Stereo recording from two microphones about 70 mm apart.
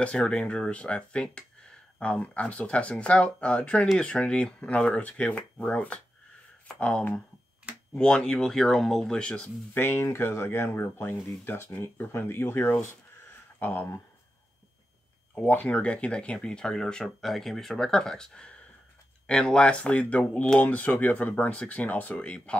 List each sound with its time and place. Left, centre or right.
0.2 s speech: centre
9.8 s speech: left
15.5 s speech: centre